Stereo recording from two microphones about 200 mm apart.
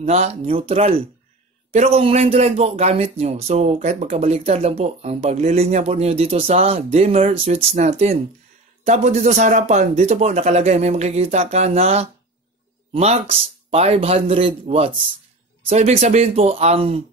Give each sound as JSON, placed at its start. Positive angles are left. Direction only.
{"t": 0.0, "sound": "a man's voice", "side_deg": -35}